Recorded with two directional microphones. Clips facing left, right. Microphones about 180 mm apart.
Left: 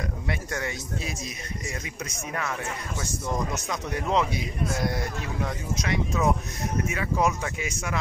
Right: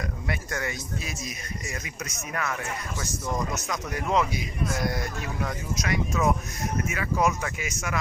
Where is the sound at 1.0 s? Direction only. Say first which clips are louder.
Left 1 dB; 30° left (ahead or behind).